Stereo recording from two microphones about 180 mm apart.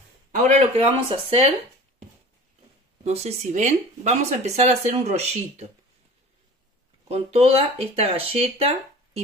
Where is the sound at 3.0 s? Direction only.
35° right (ahead or behind).